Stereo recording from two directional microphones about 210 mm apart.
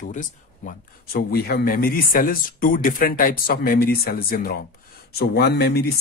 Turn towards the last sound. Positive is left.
turn(degrees=50)  # may be behind; listen again after turning